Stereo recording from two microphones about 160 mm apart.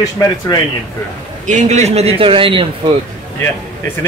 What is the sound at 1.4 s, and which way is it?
A man's voice, 50° right (ahead or behind).